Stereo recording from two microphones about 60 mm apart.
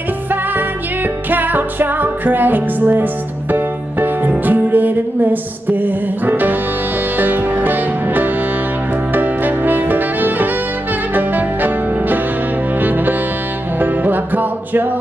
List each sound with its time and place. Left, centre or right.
1.3 s music: right